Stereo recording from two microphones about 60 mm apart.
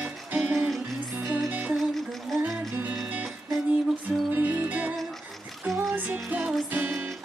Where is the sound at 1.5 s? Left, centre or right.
Right.